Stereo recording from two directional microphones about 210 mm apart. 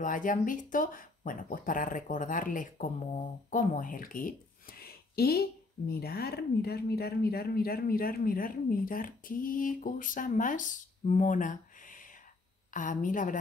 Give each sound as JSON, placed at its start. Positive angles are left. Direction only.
{"t": 0.0, "sound": "speech", "side_deg": 40}